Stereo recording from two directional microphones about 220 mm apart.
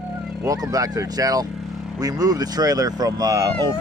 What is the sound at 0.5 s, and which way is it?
Speech, 15° right (ahead or behind).